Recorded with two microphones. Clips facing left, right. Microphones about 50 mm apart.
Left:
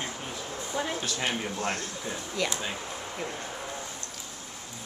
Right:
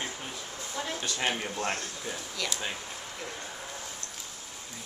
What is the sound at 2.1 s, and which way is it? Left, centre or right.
Speech, centre.